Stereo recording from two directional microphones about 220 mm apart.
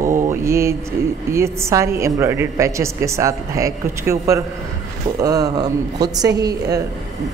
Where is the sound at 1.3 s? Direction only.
10° right (ahead or behind).